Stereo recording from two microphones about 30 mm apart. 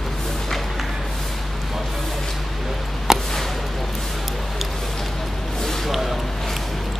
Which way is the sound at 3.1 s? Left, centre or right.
Centre.